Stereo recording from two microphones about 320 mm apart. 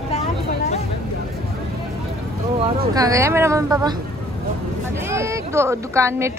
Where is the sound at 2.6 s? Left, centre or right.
Centre.